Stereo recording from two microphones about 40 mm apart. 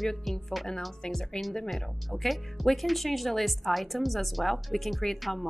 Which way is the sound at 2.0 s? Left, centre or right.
Centre.